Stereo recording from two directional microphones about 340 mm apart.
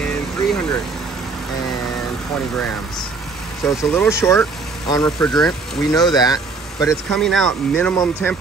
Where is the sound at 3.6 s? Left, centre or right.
Centre.